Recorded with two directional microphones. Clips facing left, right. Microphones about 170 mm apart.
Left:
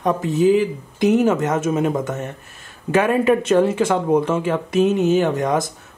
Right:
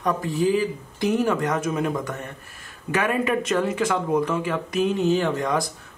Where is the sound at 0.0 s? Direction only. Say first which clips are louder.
Left 5 dB; 20° left (ahead or behind).